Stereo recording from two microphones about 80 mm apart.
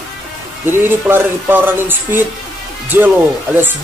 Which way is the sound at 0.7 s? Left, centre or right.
Right.